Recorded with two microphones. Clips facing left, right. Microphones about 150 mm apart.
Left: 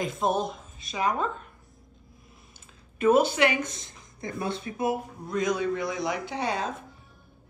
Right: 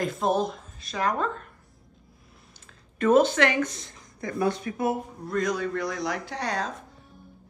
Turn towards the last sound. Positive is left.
turn(degrees=5)  # may be behind; listen again after turning